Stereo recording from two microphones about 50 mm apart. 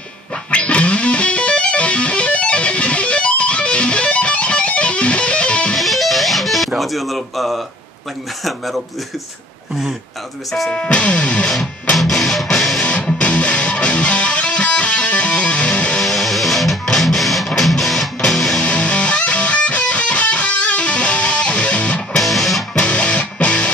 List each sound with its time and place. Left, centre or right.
0.5 s music: left
5.8 s music: centre
6.8 s speech: centre
10.7 s music: left
12.0 s music: centre
13.0 s music: left
16.0 s music: centre
18.6 s music: left
22.1 s music: centre
22.8 s music: left